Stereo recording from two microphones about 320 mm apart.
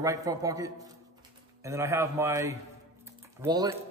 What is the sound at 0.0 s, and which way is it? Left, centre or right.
A man's voice, centre.